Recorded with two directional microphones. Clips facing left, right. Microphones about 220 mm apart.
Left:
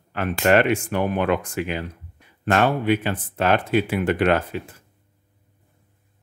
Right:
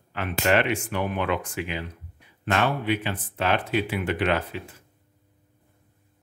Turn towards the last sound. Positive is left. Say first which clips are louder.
# left 5 dB
turn(degrees=50)  # may be behind; listen again after turning